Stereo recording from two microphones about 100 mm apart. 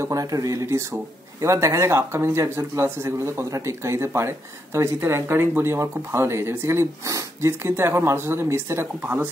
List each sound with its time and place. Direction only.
0.0 s speech: 35° right (ahead or behind)